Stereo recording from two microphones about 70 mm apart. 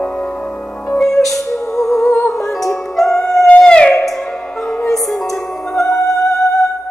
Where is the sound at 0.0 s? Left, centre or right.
Centre.